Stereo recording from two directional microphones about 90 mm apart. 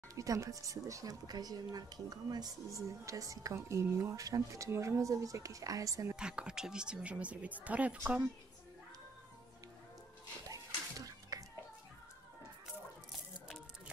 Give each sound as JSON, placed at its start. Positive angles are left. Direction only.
{"t": 0.1, "sound": "speech", "side_deg": -40}
{"t": 6.1, "sound": "a woman's voice", "side_deg": -10}
{"t": 10.5, "sound": "music", "side_deg": -40}